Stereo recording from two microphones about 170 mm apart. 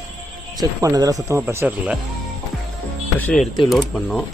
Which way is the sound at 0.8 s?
20° right (ahead or behind).